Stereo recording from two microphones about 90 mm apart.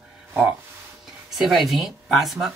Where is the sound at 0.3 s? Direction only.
25° right (ahead or behind).